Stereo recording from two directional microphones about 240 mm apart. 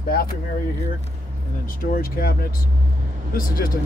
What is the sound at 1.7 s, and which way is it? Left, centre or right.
Speech, left.